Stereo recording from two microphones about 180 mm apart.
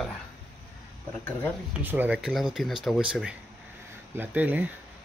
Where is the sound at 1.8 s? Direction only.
10° right (ahead or behind).